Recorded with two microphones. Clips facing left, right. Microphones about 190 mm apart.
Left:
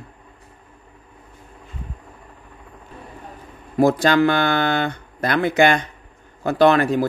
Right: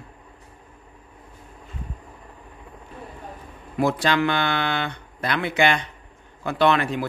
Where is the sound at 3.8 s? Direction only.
40° left (ahead or behind).